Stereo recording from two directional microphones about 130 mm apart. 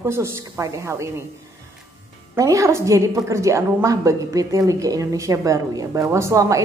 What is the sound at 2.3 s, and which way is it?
A woman's voice, 25° right (ahead or behind).